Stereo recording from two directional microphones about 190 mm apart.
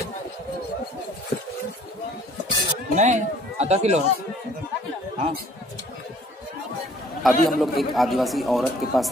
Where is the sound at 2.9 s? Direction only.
40° right (ahead or behind).